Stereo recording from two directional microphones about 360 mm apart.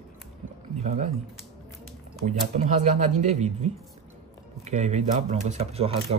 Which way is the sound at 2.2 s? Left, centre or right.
Centre.